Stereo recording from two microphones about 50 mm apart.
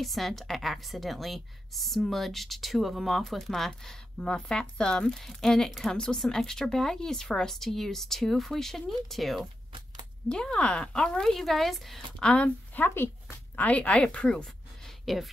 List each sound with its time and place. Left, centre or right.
0.0 s a woman's voice: centre
10.2 s speech: centre
12.2 s speech: centre
12.7 s a woman's voice: left; by 14.9 s centre
14.9 s a sound: centre